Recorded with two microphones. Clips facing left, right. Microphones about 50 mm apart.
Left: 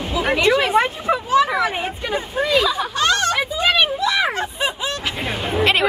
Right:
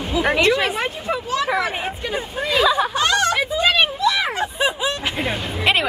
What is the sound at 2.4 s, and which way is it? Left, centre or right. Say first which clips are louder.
Speech: right 3 dB; centre.